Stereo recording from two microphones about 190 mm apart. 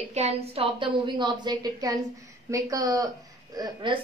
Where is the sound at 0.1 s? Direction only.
35° right (ahead or behind).